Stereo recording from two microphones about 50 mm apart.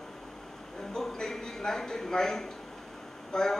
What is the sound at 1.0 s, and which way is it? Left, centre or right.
Speech, centre.